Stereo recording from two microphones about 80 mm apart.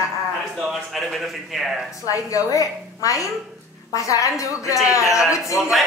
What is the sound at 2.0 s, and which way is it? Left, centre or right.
A woman's voice, left.